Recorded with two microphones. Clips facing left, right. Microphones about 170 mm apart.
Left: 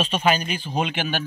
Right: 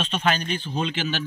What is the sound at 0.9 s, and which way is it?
Speech, 55° left (ahead or behind).